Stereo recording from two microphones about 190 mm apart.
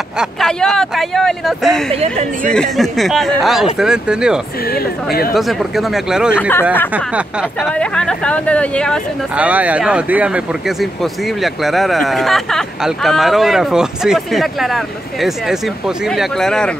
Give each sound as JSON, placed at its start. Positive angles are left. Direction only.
{"t": 0.2, "sound": "speech", "side_deg": 0}
{"t": 2.0, "sound": "a woman's voice", "side_deg": -35}
{"t": 2.5, "sound": "speech", "side_deg": 0}
{"t": 4.6, "sound": "speech", "side_deg": 55}
{"t": 5.3, "sound": "speech", "side_deg": 0}
{"t": 7.7, "sound": "speech", "side_deg": 5}
{"t": 9.4, "sound": "speech", "side_deg": -10}